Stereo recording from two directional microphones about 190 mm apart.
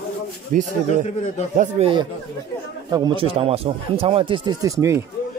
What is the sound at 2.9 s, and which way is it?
Speech, 25° right (ahead or behind).